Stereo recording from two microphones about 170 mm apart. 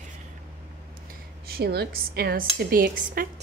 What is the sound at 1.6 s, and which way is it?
Speech, 70° right (ahead or behind).